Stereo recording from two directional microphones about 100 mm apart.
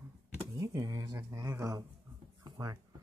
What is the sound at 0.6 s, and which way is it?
Speech, 35° right (ahead or behind).